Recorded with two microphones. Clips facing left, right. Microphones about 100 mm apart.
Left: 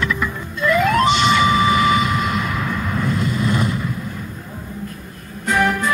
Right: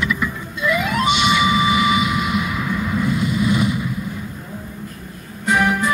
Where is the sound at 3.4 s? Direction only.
10° right (ahead or behind).